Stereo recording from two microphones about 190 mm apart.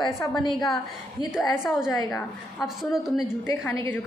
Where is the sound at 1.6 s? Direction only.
5° right (ahead or behind).